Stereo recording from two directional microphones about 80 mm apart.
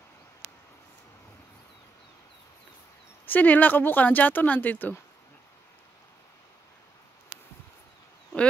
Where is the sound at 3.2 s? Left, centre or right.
Left.